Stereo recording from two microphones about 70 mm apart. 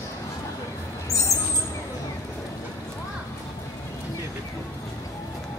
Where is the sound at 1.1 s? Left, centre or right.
Left.